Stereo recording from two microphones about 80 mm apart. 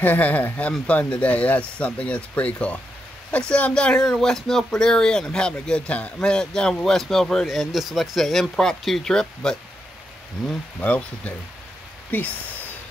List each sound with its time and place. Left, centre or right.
0.0 s speech: left
10.8 s speech: centre